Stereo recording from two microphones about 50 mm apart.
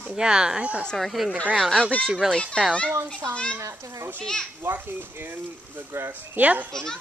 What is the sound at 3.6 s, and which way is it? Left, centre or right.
Speech, right.